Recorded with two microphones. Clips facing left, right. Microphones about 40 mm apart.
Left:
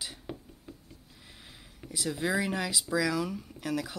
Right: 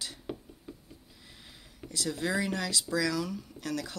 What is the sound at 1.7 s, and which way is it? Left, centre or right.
Speech, centre.